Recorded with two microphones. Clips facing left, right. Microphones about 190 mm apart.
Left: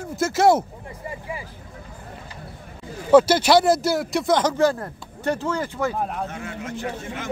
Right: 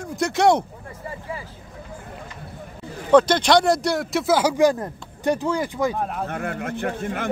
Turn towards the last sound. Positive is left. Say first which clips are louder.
# right 4 dB
turn(degrees=-55)  # may be behind; listen again after turning